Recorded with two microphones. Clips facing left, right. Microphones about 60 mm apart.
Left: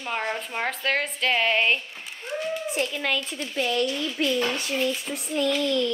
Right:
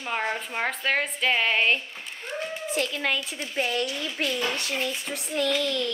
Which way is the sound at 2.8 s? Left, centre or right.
Left.